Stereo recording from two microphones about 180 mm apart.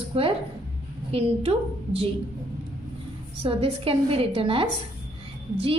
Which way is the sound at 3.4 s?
30° right (ahead or behind).